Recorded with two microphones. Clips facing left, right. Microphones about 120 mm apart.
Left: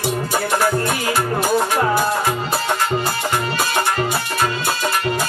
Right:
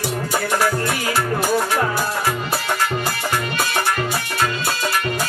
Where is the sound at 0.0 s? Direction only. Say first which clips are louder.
Left 2 dB; 20° left (ahead or behind).